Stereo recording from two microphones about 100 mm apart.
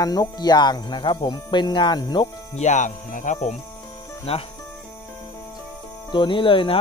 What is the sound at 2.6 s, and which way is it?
Speech, 90° left.